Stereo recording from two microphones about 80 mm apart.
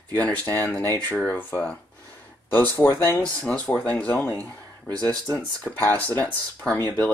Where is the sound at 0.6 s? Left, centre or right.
Left.